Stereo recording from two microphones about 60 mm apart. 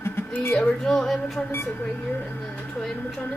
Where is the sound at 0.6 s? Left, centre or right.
Centre.